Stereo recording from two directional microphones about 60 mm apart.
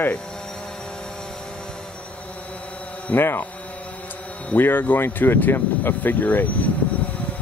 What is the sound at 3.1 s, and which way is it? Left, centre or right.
Speech, left.